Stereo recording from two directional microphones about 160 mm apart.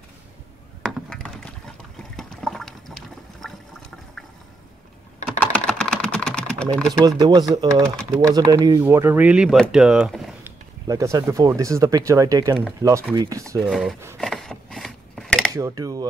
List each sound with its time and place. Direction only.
0.8 s computer keyboard: centre (ahead or behind)
2.1 s water: 5° left (ahead or behind)
5.4 s typing: 5° left (ahead or behind)
6.9 s speech: 25° right (ahead or behind)
8.8 s speech: 10° right (ahead or behind)
10.4 s speech: 20° right (ahead or behind)
13.6 s speech: centre (ahead or behind)
14.1 s chopping: centre (ahead or behind)
15.5 s speech: 20° right (ahead or behind)